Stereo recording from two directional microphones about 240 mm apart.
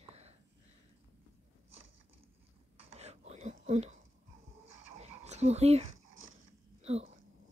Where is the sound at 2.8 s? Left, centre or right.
Right.